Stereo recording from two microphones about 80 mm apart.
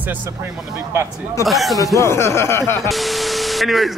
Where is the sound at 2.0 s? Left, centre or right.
Left.